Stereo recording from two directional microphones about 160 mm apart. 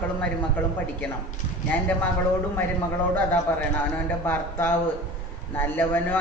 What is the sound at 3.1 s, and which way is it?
Speech, 10° left (ahead or behind).